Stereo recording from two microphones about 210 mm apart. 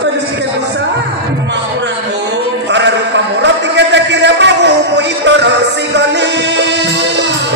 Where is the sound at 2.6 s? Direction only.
55° right (ahead or behind).